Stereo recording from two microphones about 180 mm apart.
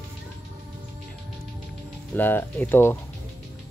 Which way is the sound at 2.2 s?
10° left (ahead or behind).